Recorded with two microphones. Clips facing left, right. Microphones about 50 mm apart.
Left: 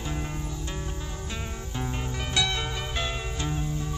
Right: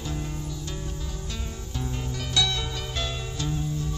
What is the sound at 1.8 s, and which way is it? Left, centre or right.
Music, left.